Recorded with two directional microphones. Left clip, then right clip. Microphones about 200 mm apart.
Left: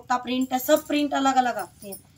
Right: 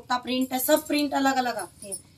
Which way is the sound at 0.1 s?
5° left (ahead or behind).